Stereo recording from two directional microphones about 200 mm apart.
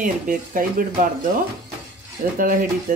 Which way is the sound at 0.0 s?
40° right (ahead or behind).